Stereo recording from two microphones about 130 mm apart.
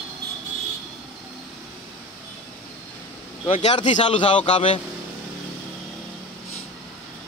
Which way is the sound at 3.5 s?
50° left (ahead or behind).